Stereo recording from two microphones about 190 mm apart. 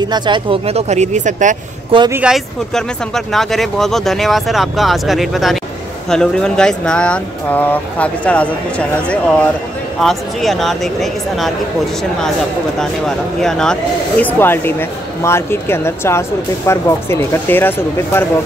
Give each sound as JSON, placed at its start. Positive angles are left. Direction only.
{"t": 0.0, "sound": "speech", "side_deg": -25}
{"t": 2.0, "sound": "speech", "side_deg": -5}
{"t": 12.7, "sound": "speech", "side_deg": 0}